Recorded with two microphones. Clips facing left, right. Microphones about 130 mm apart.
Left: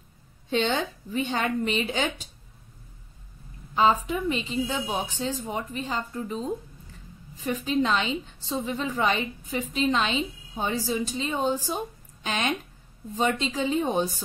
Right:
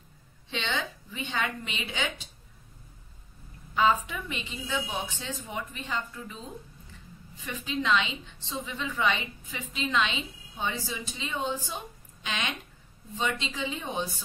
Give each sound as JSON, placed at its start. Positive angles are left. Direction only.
{"t": 0.5, "sound": "a woman's voice", "side_deg": 45}
{"t": 3.7, "sound": "a woman's voice", "side_deg": 35}